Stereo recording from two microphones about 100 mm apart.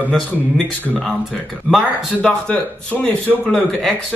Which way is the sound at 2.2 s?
10° left (ahead or behind).